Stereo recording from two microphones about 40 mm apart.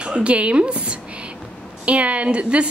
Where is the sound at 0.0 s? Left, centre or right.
Right.